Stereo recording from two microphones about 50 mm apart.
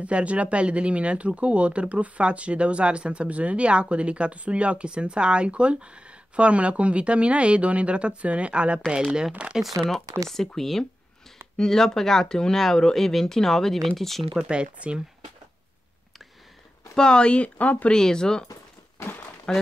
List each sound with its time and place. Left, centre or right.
0.0 s speech: right
9.6 s speech: centre
14.5 s speech: right
16.9 s speech: centre
17.9 s speech: centre